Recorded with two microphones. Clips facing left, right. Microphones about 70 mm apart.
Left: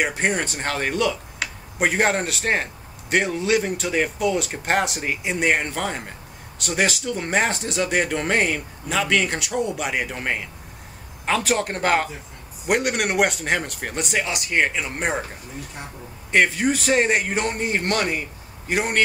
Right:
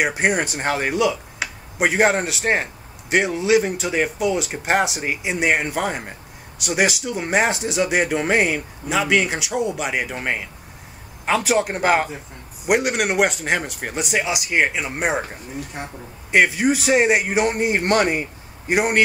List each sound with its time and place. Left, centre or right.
0.0 s speech: centre
16.3 s speech: centre